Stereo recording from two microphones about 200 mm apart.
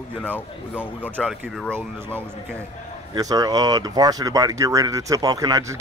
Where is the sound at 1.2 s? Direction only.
Centre (ahead or behind).